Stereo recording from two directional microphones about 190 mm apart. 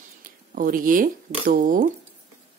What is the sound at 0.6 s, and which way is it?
Speech, 45° right (ahead or behind).